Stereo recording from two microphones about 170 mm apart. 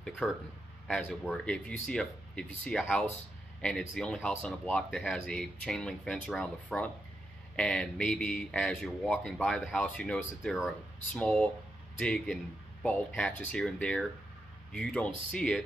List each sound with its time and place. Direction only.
0.2 s speech: 5° left (ahead or behind)